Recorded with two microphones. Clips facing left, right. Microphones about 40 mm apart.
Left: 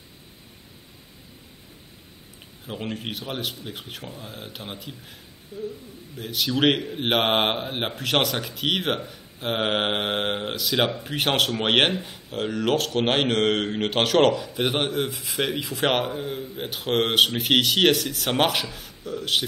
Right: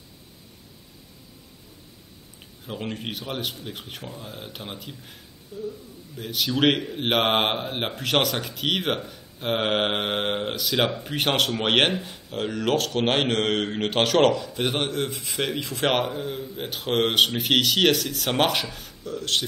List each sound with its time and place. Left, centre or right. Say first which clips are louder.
2.6 s speech: even; centre
5.5 s speech: left 1 dB; left
6.1 s speech: even; centre